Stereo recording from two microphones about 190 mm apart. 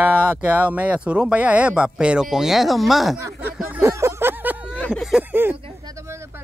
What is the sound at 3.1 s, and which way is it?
Speech, 15° right (ahead or behind).